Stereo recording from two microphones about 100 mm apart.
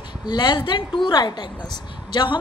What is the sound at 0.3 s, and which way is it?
A woman's voice, 50° left (ahead or behind).